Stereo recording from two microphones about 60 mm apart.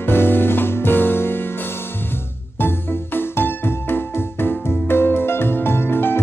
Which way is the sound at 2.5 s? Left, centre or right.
Left.